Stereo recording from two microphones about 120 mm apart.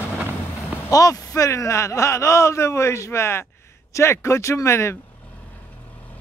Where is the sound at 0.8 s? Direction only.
30° left (ahead or behind).